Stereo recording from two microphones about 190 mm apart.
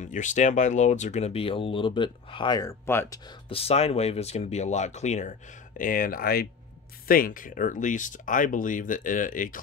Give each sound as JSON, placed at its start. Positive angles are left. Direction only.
{"t": 0.0, "sound": "speech", "side_deg": 40}
{"t": 2.9, "sound": "speech", "side_deg": 10}
{"t": 3.4, "sound": "speech", "side_deg": 30}